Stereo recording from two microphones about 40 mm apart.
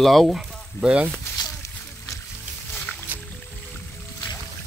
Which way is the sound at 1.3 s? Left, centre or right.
Left.